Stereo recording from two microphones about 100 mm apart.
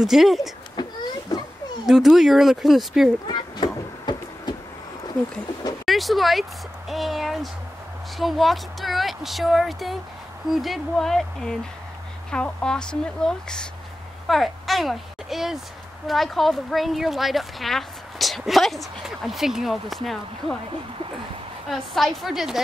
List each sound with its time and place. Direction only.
0.0 s a woman's voice: 5° right (ahead or behind)
0.7 s a sound: 50° left (ahead or behind)
1.9 s a woman's voice: 5° right (ahead or behind)
3.3 s a sound: 50° left (ahead or behind)
5.9 s a woman's voice: centre (ahead or behind)
21.6 s a woman's voice: centre (ahead or behind)